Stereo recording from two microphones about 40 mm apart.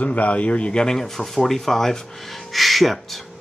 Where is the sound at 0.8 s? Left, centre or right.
Centre.